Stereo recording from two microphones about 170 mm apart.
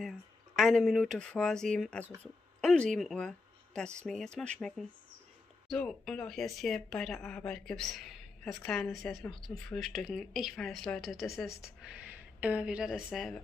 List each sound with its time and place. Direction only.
0.6 s speech: centre (ahead or behind)
2.6 s a sound: 5° left (ahead or behind)
3.0 s speech: centre (ahead or behind)